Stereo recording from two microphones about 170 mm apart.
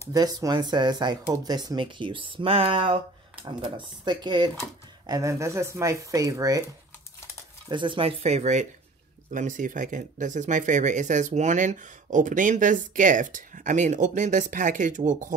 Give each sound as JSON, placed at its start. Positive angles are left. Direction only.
{"t": 0.1, "sound": "speech", "side_deg": -20}
{"t": 7.6, "sound": "speech", "side_deg": -30}